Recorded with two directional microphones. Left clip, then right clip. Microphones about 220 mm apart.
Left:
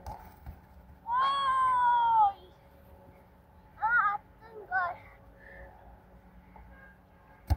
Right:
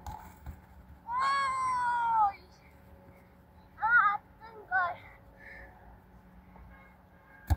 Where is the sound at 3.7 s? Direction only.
5° right (ahead or behind).